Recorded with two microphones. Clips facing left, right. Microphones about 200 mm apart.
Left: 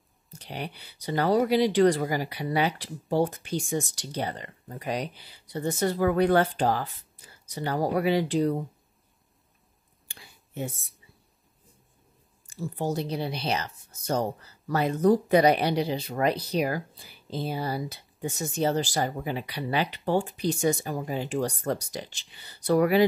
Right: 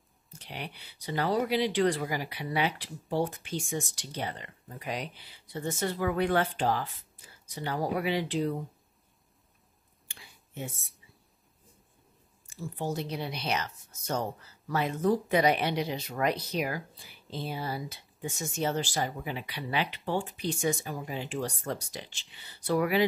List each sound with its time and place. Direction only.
0.3 s speech: 40° left (ahead or behind)
10.0 s a sound: 40° left (ahead or behind)
12.4 s speech: 35° left (ahead or behind)